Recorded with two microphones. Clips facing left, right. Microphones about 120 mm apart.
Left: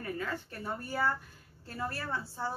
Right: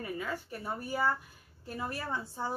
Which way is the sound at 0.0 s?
10° right (ahead or behind).